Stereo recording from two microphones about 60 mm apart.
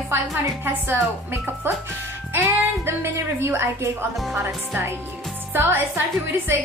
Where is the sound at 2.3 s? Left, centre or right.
Right.